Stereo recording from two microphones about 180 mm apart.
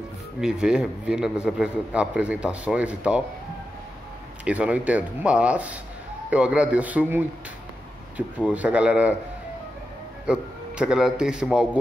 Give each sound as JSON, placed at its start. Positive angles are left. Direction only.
{"t": 0.4, "sound": "a man's voice", "side_deg": -5}
{"t": 4.5, "sound": "speech", "side_deg": -5}
{"t": 8.4, "sound": "speech", "side_deg": -5}
{"t": 10.2, "sound": "a man's voice", "side_deg": -5}